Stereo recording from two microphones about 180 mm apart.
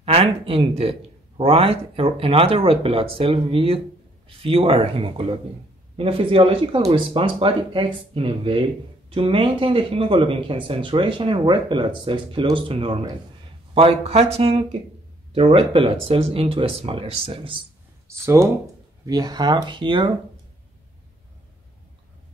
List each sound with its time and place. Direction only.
0.0 s speech: 30° right (ahead or behind)
18.0 s speech: 15° right (ahead or behind)